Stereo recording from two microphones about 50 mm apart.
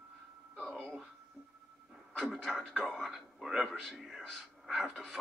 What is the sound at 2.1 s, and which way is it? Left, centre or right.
A man's voice, centre.